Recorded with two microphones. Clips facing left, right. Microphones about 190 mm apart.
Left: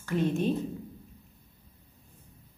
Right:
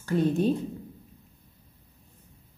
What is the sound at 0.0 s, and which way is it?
Speech, 35° right (ahead or behind).